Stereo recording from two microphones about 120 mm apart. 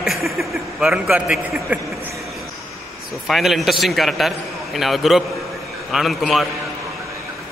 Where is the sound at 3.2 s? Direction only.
Centre (ahead or behind).